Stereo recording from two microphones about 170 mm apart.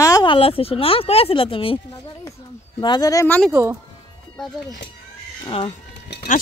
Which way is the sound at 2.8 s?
25° left (ahead or behind).